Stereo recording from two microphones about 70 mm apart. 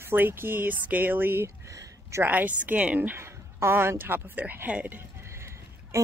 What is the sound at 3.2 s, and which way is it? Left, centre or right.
A woman's voice, right.